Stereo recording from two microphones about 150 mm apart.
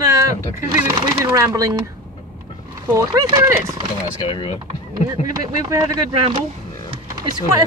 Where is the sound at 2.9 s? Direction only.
20° right (ahead or behind).